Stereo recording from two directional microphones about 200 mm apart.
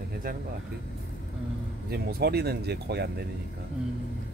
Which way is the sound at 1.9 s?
50° right (ahead or behind).